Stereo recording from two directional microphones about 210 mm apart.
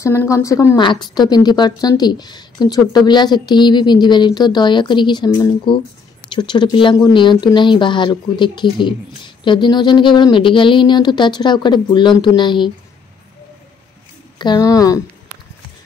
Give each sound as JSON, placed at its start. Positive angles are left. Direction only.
{"t": 0.0, "sound": "speech", "side_deg": 10}
{"t": 14.4, "sound": "speech", "side_deg": 20}